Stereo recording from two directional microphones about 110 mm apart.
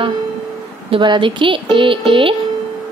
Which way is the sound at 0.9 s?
45° right (ahead or behind).